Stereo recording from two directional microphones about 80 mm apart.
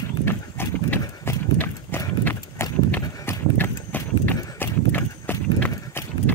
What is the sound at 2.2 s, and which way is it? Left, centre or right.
Horse, left.